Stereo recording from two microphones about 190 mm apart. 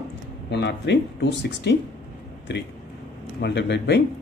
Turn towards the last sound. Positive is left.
turn(degrees=65)  # may be behind; listen again after turning